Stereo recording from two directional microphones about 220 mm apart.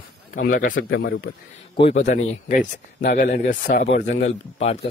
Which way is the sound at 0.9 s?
55° left (ahead or behind).